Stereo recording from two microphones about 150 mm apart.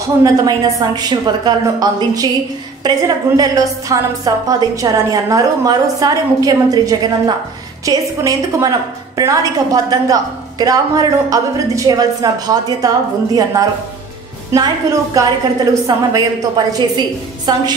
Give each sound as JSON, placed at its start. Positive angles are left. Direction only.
{"t": 0.2, "sound": "a woman's voice", "side_deg": -25}